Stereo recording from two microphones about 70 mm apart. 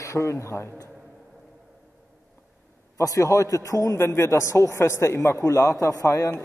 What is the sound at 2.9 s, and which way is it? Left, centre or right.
A man's voice, left.